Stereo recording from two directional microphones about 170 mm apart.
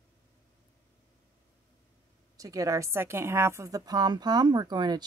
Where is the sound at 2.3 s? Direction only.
20° right (ahead or behind).